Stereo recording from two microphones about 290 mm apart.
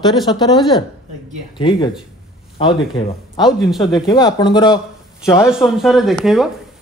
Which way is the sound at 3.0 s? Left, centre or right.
Centre.